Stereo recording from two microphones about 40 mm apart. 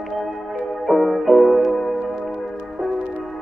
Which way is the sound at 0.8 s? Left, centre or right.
Centre.